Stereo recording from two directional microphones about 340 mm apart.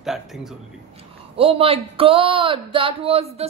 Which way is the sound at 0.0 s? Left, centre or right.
Centre.